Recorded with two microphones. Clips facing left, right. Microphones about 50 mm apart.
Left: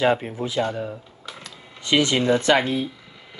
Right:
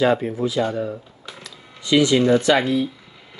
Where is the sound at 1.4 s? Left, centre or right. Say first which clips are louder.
Even; left.